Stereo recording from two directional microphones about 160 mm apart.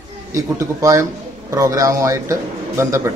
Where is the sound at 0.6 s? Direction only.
20° right (ahead or behind).